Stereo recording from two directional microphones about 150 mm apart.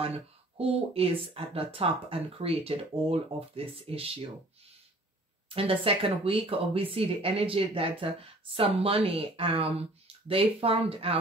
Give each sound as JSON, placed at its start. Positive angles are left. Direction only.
{"t": 0.6, "sound": "speech", "side_deg": -40}
{"t": 5.5, "sound": "speech", "side_deg": -40}